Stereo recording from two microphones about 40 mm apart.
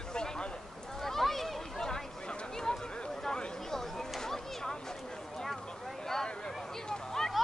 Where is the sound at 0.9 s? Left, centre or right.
Centre.